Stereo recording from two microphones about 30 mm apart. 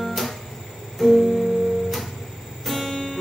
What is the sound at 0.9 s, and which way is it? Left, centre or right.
Music, centre.